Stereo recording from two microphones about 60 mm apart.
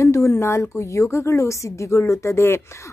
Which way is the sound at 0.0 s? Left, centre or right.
Left.